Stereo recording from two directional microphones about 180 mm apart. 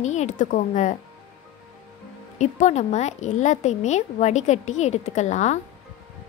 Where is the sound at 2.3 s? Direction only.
40° left (ahead or behind).